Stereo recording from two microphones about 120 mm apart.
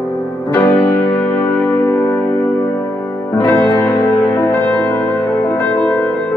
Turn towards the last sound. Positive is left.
turn(degrees=30)  # may be behind; listen again after turning